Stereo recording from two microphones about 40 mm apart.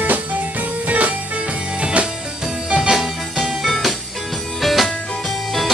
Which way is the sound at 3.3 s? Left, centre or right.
Centre.